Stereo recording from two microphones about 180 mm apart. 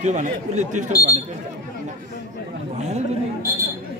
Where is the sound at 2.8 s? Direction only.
40° right (ahead or behind).